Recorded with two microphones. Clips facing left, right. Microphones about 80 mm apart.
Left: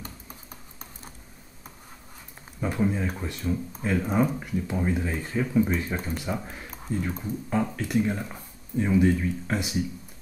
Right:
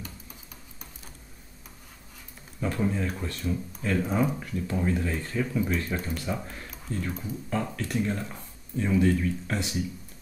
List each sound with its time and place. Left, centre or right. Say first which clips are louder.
2.6 s speech: left 2 dB; centre